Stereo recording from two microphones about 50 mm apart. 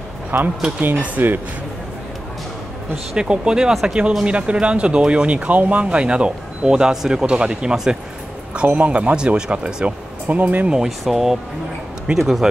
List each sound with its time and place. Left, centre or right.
0.3 s speech: right
0.9 s speech: right
3.2 s speech: centre
8.6 s speech: right
9.1 s speech: centre
9.8 s speech: right
10.7 s speech: centre